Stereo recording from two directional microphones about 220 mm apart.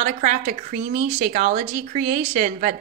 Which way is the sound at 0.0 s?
35° right (ahead or behind).